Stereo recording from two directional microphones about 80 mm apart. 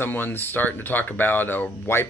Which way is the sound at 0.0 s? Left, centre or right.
Left.